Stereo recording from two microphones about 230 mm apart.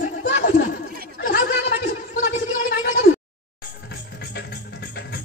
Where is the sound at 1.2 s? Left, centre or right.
Left.